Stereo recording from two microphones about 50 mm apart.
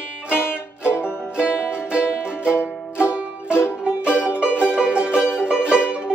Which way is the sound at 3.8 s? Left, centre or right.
Right.